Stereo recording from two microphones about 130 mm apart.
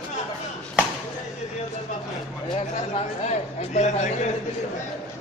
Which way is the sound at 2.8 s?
60° left (ahead or behind).